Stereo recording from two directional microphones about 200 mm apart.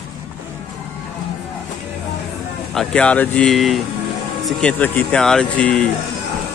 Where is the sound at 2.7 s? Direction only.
5° left (ahead or behind).